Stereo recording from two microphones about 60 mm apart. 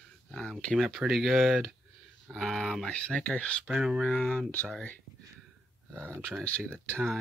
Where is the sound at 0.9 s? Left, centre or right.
Centre.